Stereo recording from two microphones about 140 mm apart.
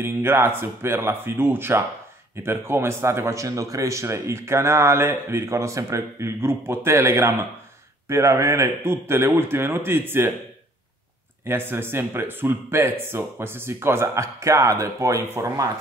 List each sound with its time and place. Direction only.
0.0 s a man's voice: 15° right (ahead or behind)
11.4 s a man's voice: 15° right (ahead or behind)